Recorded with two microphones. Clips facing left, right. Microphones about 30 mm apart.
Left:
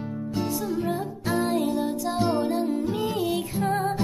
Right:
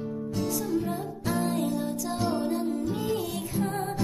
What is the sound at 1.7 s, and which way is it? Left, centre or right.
Music, left.